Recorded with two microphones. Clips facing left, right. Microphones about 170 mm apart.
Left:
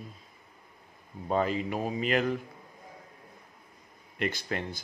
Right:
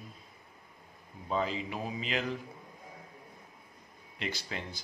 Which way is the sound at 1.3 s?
55° left (ahead or behind).